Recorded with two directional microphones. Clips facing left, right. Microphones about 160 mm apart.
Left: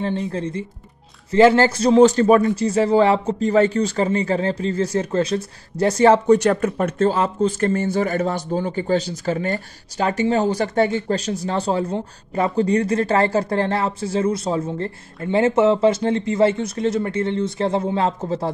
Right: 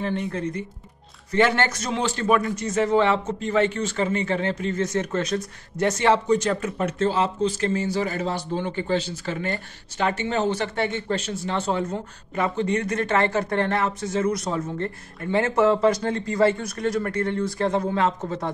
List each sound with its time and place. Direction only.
0.0 s speech: 30° left (ahead or behind)
2.0 s speech: 40° left (ahead or behind)
6.3 s speech: 60° left (ahead or behind); by 18.5 s 30° left (ahead or behind)